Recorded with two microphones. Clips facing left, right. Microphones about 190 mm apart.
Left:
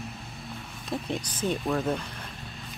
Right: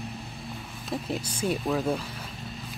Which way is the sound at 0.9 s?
5° right (ahead or behind).